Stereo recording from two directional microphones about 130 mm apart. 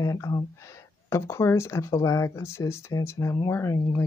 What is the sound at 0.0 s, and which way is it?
Speech, 25° left (ahead or behind).